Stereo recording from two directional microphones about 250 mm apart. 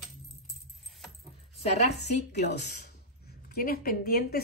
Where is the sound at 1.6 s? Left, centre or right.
Left.